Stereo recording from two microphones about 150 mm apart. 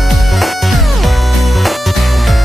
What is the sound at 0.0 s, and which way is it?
Music, centre (ahead or behind).